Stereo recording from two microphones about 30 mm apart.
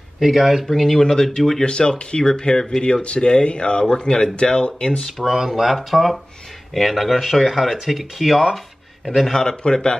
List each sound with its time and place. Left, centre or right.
0.2 s speech: centre
0.7 s speech: centre
1.0 s speech: centre
1.6 s speech: left
5.2 s speech: centre
9.3 s speech: centre
9.6 s speech: left